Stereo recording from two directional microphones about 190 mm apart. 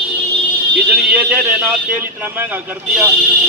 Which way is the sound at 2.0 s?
10° right (ahead or behind).